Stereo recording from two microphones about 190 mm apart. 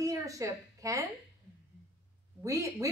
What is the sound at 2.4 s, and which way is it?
Speech, 15° right (ahead or behind).